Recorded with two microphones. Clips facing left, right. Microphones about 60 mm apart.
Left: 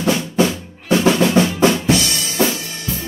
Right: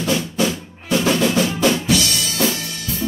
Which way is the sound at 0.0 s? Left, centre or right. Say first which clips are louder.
Left 3 dB; left.